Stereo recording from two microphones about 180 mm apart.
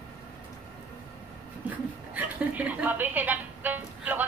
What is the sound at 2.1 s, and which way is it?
Speech, 10° right (ahead or behind).